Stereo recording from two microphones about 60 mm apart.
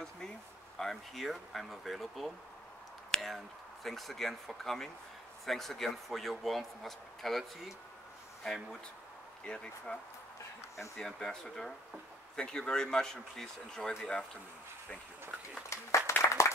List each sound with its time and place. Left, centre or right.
0.7 s speech: centre
11.0 s speech: centre
15.7 s applause: left